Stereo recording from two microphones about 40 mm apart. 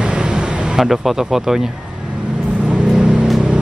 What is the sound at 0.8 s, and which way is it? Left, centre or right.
Speech, centre.